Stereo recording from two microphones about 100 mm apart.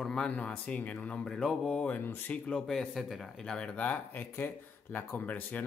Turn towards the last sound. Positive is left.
turn(degrees=15)  # may be behind; listen again after turning